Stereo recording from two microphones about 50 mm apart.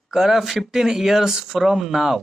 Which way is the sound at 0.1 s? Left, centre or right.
Centre.